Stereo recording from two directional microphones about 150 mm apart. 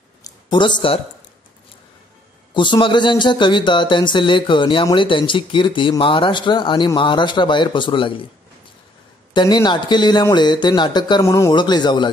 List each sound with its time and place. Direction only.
0.2 s a sound: 30° left (ahead or behind)
2.5 s a man's voice: 30° left (ahead or behind)
9.3 s a man's voice: 30° left (ahead or behind)